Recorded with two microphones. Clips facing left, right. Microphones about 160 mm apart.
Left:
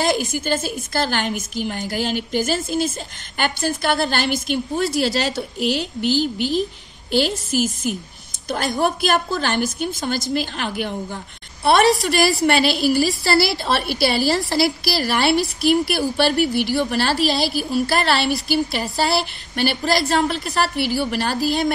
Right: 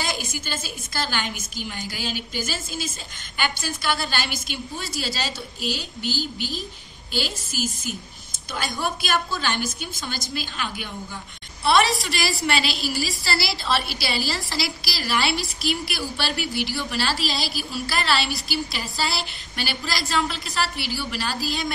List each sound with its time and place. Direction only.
0.0 s a woman's voice: 55° left (ahead or behind)